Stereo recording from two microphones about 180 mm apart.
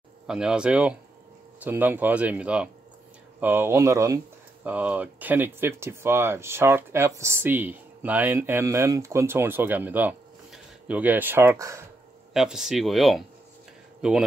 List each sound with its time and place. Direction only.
0.3 s speech: 5° right (ahead or behind)
12.4 s speech: centre (ahead or behind)